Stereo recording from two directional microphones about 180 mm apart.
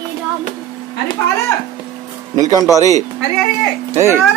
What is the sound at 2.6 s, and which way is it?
Speech, 20° left (ahead or behind).